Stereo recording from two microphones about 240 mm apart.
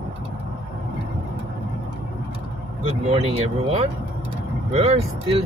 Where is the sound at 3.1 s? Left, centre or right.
Right.